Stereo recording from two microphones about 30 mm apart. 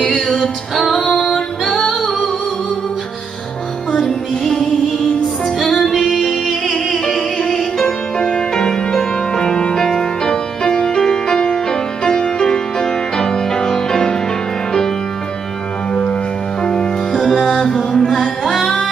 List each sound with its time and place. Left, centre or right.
0.0 s music: centre
5.9 s music: centre
6.4 s music: centre
7.1 s music: centre
15.9 s music: left
17.1 s music: centre